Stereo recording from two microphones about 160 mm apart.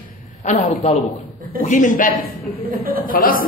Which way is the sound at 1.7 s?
55° left (ahead or behind).